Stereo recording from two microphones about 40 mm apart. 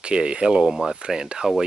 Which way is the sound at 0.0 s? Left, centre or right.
Right.